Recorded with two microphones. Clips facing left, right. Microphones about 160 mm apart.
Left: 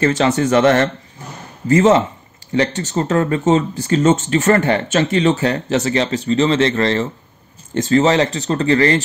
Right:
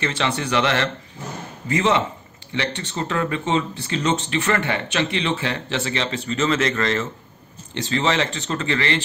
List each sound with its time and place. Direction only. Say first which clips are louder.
0.0 s speech: left 9 dB; 40° left (ahead or behind)
7.7 s speech: left 8 dB; 45° left (ahead or behind)